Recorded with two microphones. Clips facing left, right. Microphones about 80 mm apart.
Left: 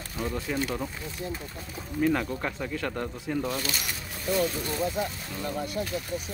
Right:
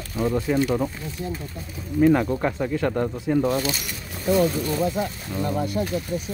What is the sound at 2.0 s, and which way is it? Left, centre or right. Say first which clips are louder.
Speech: right 8 dB; right.